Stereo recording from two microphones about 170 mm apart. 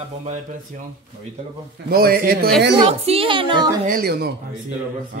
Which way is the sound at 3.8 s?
60° right (ahead or behind).